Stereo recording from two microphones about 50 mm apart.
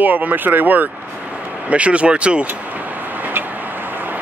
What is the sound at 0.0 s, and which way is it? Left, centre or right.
Speech, right.